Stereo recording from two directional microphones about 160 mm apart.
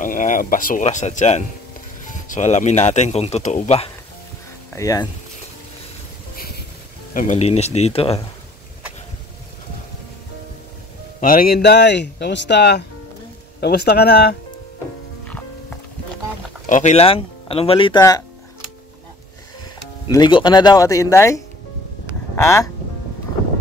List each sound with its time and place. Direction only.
0.0 s a sound: 55° left (ahead or behind)
0.8 s speech: 50° left (ahead or behind)
4.7 s speech: 20° left (ahead or behind)
6.3 s a sound: 70° left (ahead or behind)
7.2 s speech: 45° left (ahead or behind)
11.1 s speech: 60° left (ahead or behind); by 14.3 s 90° left
16.6 s speech: 50° left (ahead or behind); by 18.0 s 30° left (ahead or behind)
20.1 s speech: 30° left (ahead or behind)
22.0 s a sound: 15° left (ahead or behind)